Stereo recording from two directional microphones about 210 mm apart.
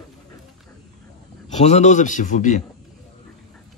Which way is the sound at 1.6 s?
35° left (ahead or behind).